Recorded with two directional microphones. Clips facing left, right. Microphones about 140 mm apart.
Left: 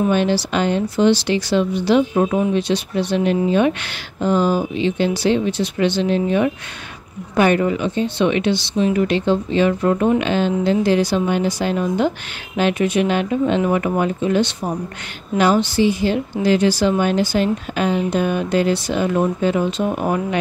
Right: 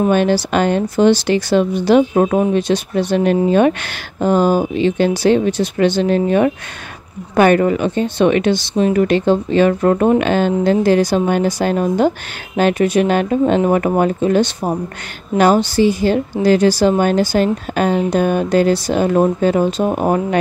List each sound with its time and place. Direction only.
0.0 s speech: 50° right (ahead or behind)